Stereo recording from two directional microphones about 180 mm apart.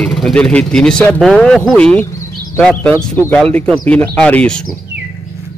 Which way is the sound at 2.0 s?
15° left (ahead or behind).